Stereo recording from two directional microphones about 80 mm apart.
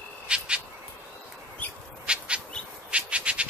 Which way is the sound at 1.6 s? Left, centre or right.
Centre.